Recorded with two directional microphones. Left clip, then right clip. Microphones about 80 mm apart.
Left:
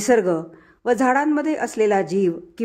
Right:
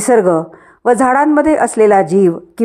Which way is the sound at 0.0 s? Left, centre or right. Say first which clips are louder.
Right 7 dB; right.